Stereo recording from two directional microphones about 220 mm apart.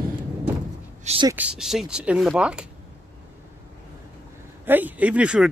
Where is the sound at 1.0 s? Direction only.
30° right (ahead or behind).